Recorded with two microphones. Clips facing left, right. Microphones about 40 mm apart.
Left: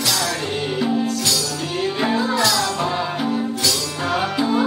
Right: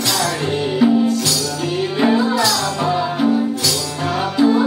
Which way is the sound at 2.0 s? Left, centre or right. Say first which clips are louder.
Right 4 dB; centre.